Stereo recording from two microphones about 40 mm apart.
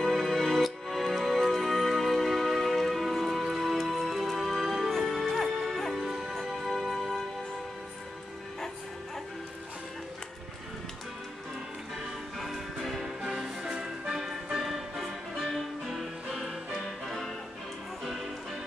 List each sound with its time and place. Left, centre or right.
0.0 s music: centre
12.0 s music: centre; by 14.1 s right
14.1 s music: centre
15.0 s music: centre